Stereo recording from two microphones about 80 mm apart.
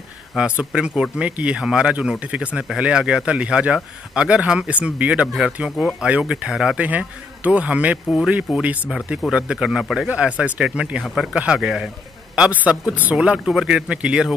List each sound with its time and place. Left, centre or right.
0.4 s speech: centre